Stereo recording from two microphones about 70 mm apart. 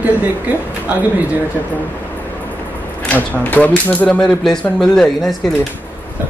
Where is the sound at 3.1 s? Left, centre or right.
Left.